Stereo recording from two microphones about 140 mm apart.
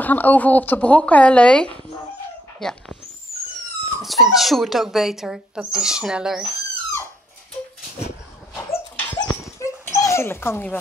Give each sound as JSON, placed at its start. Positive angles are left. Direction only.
{"t": 0.0, "sound": "a woman's voice", "side_deg": 10}
{"t": 4.0, "sound": "speech", "side_deg": 0}
{"t": 8.6, "sound": "dog", "side_deg": 20}